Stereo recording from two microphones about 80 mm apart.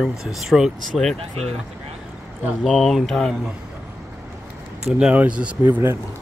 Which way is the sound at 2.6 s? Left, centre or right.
Centre.